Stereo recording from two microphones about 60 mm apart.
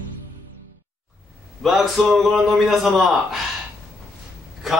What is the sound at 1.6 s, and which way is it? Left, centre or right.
A man's voice, centre.